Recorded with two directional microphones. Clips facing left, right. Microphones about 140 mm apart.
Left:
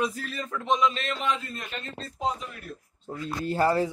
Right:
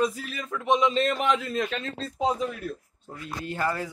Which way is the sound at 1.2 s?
75° right (ahead or behind).